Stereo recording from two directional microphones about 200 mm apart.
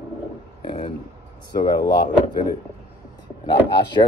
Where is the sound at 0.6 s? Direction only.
25° left (ahead or behind).